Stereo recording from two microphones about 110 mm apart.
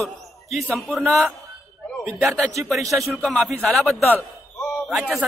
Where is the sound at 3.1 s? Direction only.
Centre (ahead or behind).